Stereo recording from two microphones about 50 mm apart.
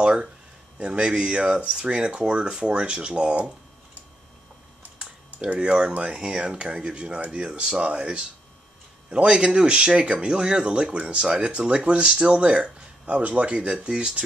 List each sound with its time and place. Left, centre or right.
0.0 s speech: centre
4.8 s typing: right
5.6 s speech: centre